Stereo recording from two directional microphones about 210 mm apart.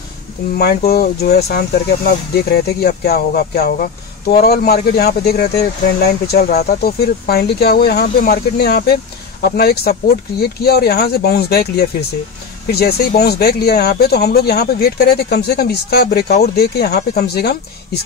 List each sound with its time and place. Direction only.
0.6 s speech: 50° left (ahead or behind)
13.2 s speech: 50° left (ahead or behind)